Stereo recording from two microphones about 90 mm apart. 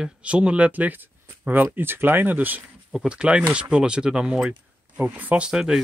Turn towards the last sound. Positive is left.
turn(degrees=-5)  # may be behind; listen again after turning